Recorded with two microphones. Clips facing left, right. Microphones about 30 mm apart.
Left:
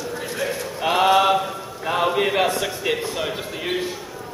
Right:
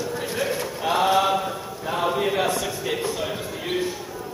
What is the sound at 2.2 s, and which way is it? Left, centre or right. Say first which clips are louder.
Speech: left 3 dB; left.